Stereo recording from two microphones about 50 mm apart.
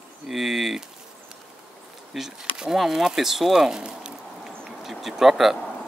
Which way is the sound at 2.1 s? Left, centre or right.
Centre.